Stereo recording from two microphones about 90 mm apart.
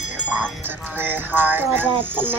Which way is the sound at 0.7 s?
20° right (ahead or behind).